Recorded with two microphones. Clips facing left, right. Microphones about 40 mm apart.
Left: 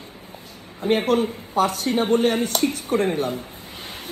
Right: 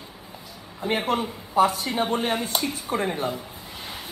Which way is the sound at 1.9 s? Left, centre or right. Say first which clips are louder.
Left 5 dB; right.